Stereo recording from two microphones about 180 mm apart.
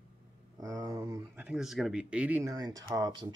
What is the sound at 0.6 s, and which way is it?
Speech, 20° right (ahead or behind).